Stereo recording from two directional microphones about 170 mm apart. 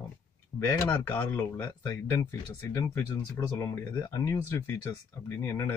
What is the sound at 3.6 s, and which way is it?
Speech, 20° left (ahead or behind).